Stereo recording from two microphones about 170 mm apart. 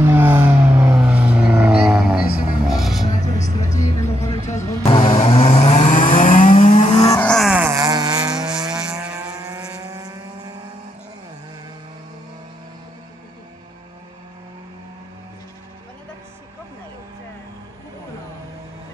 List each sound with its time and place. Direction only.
0.1 s vehicle: 15° right (ahead or behind)
2.7 s music: centre (ahead or behind)
3.2 s vehicle: 45° left (ahead or behind)
3.6 s vehicle: 20° left (ahead or behind)
4.5 s music: 40° left (ahead or behind)
4.9 s vehicle: 35° left (ahead or behind)
7.2 s vehicle: 5° left (ahead or behind); by 8.5 s 25° right (ahead or behind)
8.5 s vehicle: 5° right (ahead or behind)
9.8 s vehicle: 20° right (ahead or behind)